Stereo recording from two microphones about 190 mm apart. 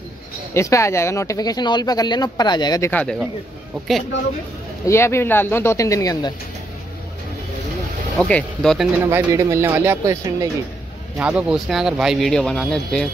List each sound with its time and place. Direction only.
0.6 s speech: 15° left (ahead or behind)
2.9 s speech: 10° left (ahead or behind)
4.8 s speech: 15° left (ahead or behind)
8.2 s speech: 5° left (ahead or behind)
9.0 s speech: 15° right (ahead or behind); by 13.1 s 5° left (ahead or behind)